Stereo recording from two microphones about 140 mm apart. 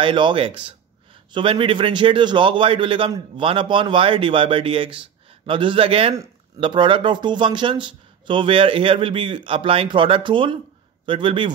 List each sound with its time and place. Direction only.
0.0 s speech: 35° right (ahead or behind)